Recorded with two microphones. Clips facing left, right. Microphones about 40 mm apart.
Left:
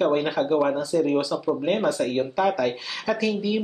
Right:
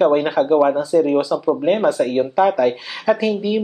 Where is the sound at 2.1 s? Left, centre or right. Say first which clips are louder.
Right 6 dB; centre.